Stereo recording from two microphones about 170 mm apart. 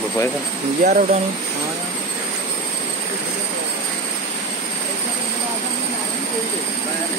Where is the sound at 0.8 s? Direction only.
45° right (ahead or behind).